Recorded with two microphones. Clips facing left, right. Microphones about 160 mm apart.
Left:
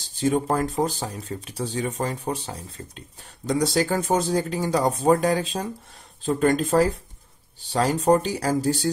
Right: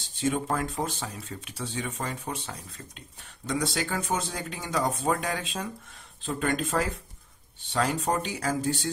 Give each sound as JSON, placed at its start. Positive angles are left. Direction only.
{"t": 0.1, "sound": "speech", "side_deg": 35}